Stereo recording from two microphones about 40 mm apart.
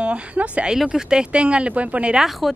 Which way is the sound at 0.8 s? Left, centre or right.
Centre.